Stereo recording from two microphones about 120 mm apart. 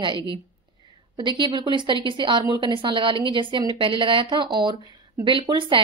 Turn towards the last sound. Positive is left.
turn(degrees=-45)  # may be behind; listen again after turning